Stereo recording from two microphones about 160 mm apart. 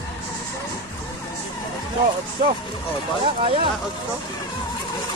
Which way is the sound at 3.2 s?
35° right (ahead or behind).